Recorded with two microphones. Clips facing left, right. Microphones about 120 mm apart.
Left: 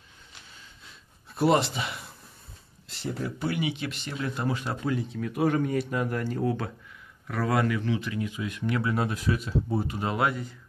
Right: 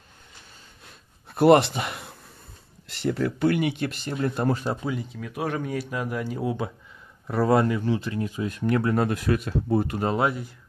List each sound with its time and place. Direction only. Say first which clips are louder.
0.8 s a sound: right 2 dB; 60° right (ahead or behind)
2.9 s speech: right 7 dB; 70° right (ahead or behind); by 4.6 s 45° right (ahead or behind)
4.8 s speech: left 1 dB; centre (ahead or behind)
7.2 s speech: right 5 dB; 30° right (ahead or behind); by 10.0 s 55° right (ahead or behind)